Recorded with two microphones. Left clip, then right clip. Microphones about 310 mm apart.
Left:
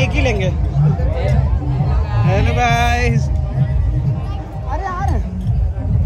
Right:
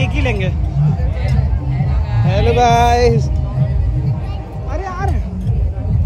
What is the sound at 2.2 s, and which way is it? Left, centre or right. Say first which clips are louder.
Music: right 4 dB; centre.